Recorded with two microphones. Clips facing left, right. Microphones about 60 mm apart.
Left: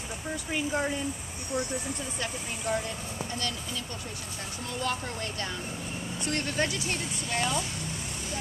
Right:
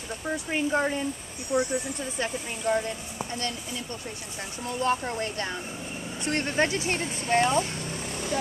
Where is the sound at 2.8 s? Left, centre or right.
Right.